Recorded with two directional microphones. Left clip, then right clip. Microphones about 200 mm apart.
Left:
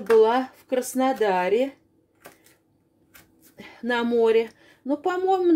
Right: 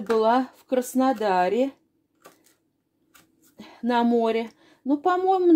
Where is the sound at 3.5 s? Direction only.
30° right (ahead or behind).